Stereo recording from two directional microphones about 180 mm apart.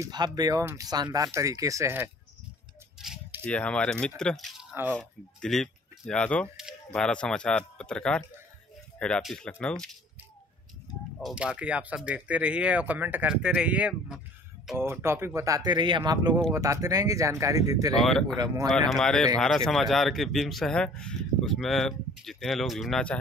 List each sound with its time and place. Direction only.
0.0 s speech: 25° right (ahead or behind)
3.0 s rattle: centre (ahead or behind)
3.4 s speech: 5° left (ahead or behind)
11.1 s speech: centre (ahead or behind); by 18.7 s 20° right (ahead or behind)
18.9 s speech: 5° left (ahead or behind)